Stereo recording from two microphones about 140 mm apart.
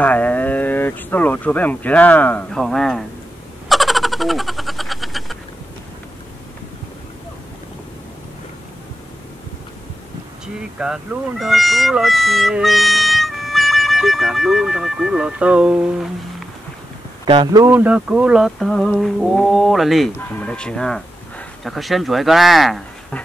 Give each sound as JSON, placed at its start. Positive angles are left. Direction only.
{"t": 0.0, "sound": "speech", "side_deg": 10}
{"t": 3.6, "sound": "a sound", "side_deg": 0}
{"t": 10.4, "sound": "speech", "side_deg": -5}
{"t": 17.3, "sound": "speech", "side_deg": -30}
{"t": 17.6, "sound": "speech", "side_deg": -10}
{"t": 20.2, "sound": "speech", "side_deg": 10}